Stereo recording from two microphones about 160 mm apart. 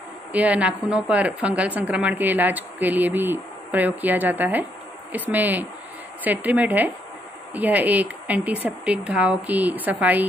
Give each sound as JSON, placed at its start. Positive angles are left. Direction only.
{"t": 0.3, "sound": "speech", "side_deg": -10}